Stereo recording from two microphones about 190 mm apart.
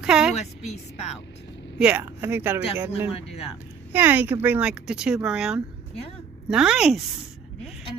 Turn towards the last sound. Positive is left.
turn(degrees=-5)  # may be behind; listen again after turning